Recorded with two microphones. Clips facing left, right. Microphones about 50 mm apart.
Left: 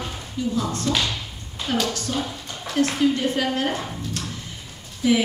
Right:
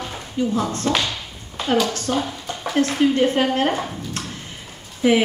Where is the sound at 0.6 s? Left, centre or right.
Right.